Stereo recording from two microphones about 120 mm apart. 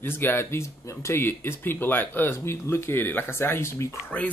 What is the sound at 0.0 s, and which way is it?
Speech, 20° left (ahead or behind).